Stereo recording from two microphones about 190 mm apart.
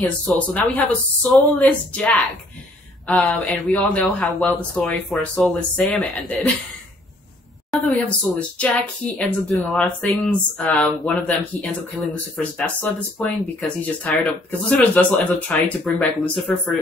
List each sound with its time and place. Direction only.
0.3 s speech: 5° left (ahead or behind)
7.7 s speech: 5° left (ahead or behind)